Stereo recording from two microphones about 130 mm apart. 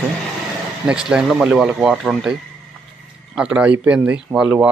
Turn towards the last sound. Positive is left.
turn(degrees=-10)  # may be behind; listen again after turning